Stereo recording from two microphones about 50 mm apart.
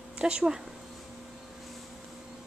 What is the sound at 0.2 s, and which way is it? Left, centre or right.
Speech, centre.